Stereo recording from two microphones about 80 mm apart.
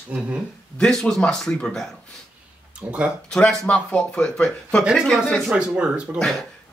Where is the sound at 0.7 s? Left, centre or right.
Centre.